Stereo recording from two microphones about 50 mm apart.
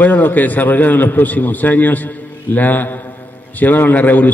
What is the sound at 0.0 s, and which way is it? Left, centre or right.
A man's voice, left.